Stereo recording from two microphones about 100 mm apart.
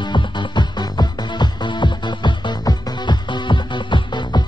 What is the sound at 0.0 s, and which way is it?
Music, 50° left (ahead or behind).